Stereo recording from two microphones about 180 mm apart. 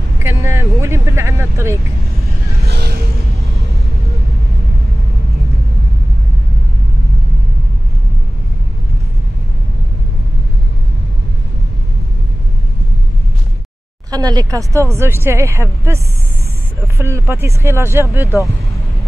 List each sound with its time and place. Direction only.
0.2 s speech: 15° right (ahead or behind)
2.6 s vehicle: 65° right (ahead or behind)
14.1 s speech: 20° right (ahead or behind)